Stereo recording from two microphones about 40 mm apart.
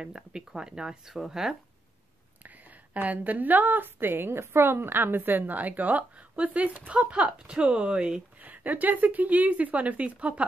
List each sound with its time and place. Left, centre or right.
0.0 s speech: right
2.4 s a woman's voice: right
8.4 s a woman's voice: right